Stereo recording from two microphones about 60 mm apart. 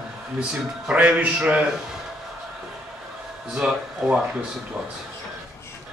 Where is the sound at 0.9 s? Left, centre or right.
Right.